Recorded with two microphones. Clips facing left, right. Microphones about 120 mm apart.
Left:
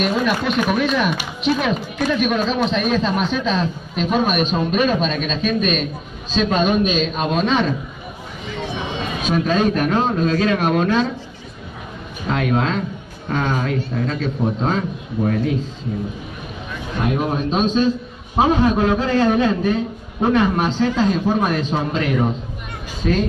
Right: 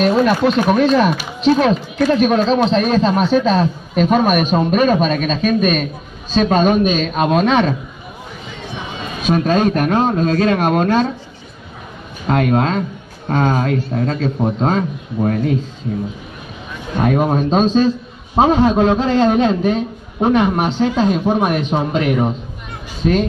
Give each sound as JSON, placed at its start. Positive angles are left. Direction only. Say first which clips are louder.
{"t": 0.0, "sound": "a man's voice", "louder": "right 6 dB", "side_deg": -35}
{"t": 9.3, "sound": "a woman's voice", "louder": "right 4 dB", "side_deg": -45}
{"t": 12.3, "sound": "a woman's voice", "louder": "right 4 dB", "side_deg": -45}
{"t": 17.0, "sound": "a man's voice", "louder": "right 5 dB", "side_deg": -40}